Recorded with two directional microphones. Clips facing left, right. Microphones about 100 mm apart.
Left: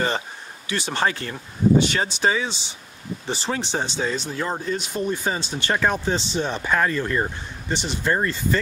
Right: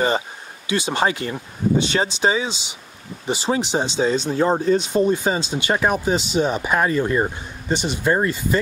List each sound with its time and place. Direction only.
0.7 s speech: 15° right (ahead or behind)